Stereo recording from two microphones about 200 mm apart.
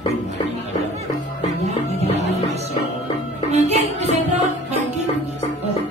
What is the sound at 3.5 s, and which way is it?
Music, 35° right (ahead or behind).